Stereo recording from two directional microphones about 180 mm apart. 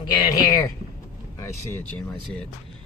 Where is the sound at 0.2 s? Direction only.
20° left (ahead or behind).